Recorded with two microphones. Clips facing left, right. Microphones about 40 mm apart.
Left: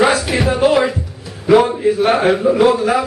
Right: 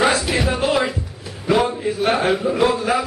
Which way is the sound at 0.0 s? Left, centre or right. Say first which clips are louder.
Left 4 dB; centre.